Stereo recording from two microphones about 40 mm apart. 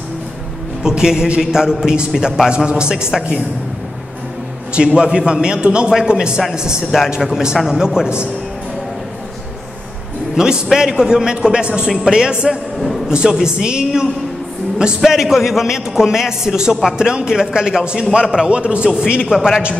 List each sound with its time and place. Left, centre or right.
0.8 s a man's voice: centre
2.5 s a man's voice: right
4.7 s a man's voice: right
7.2 s a man's voice: centre
7.5 s a man's voice: centre
10.3 s a man's voice: centre
15.0 s a man's voice: centre
19.3 s a man's voice: centre